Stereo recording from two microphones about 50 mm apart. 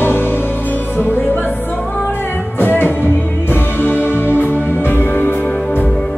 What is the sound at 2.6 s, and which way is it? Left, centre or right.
Music, left.